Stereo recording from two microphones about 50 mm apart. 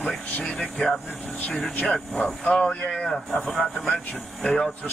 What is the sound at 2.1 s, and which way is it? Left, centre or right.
Speech, centre.